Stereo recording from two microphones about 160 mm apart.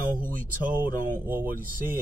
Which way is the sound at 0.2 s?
55° right (ahead or behind).